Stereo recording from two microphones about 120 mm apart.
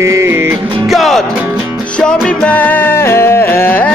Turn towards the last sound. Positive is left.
turn(degrees=15)  # may be behind; listen again after turning